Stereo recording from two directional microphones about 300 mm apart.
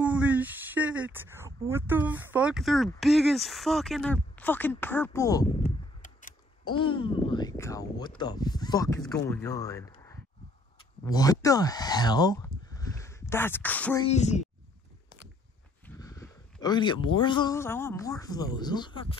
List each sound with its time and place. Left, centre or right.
0.0 s speech: centre
6.7 s speech: centre
11.1 s speech: centre
14.0 s speech: left
16.0 s a sound: centre
16.6 s speech: centre